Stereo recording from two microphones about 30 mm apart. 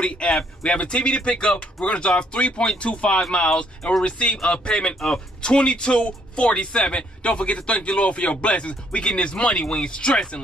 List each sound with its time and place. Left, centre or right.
0.0 s a man's voice: left
5.0 s speech: centre
5.5 s a man's voice: left